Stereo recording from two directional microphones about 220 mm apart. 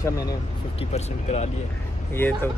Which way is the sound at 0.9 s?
30° left (ahead or behind).